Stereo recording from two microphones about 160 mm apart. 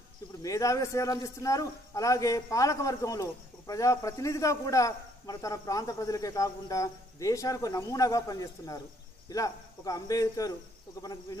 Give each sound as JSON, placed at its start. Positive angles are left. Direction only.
{"t": 0.4, "sound": "a man's voice", "side_deg": 20}